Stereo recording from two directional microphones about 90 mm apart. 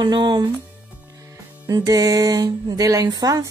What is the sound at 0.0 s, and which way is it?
Speech, 60° right (ahead or behind).